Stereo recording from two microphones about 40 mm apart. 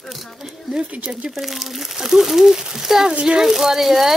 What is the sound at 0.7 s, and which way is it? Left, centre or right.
Speech, right.